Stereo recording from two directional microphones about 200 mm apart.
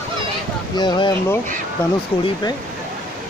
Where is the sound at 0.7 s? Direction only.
20° left (ahead or behind).